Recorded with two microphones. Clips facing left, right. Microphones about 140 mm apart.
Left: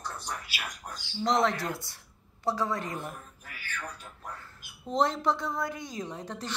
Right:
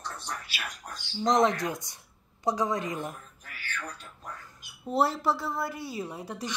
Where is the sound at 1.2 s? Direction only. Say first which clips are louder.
Right 3 dB; 20° right (ahead or behind).